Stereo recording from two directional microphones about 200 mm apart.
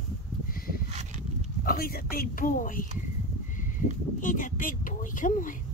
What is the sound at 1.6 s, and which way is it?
Speech, 45° left (ahead or behind).